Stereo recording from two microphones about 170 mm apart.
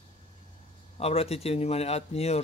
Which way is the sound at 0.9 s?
35° left (ahead or behind).